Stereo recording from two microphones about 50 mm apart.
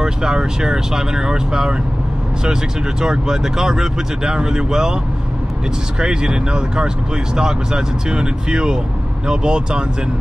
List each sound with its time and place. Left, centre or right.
0.0 s speech: centre
3.0 s speech: centre
5.9 s speech: centre